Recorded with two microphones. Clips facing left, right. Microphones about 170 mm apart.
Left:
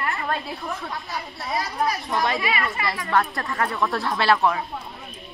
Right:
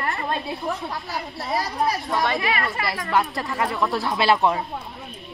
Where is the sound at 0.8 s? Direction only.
35° right (ahead or behind).